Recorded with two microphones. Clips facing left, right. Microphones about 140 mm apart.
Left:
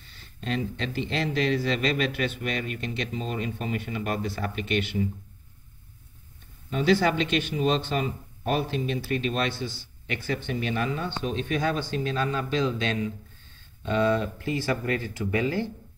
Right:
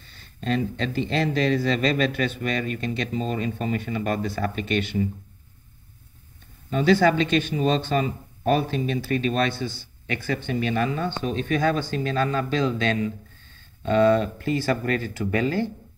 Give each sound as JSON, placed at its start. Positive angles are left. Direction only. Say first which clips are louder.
{"t": 0.4, "sound": "speech", "louder": "right 4 dB", "side_deg": -40}
{"t": 6.7, "sound": "speech", "louder": "right 4 dB", "side_deg": -50}